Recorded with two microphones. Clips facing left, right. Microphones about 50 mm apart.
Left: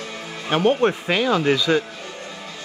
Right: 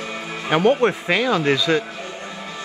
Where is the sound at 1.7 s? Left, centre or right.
Right.